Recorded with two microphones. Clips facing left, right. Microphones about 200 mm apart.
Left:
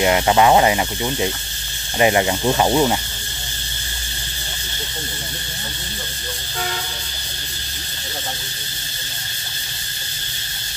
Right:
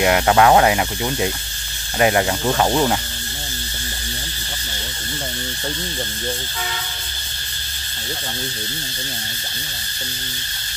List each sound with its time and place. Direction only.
0.0 s speech: centre (ahead or behind)